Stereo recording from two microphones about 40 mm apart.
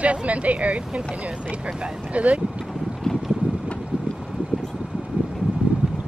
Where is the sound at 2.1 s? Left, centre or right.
Right.